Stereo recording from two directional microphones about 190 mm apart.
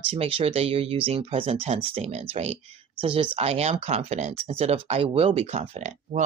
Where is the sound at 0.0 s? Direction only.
30° right (ahead or behind).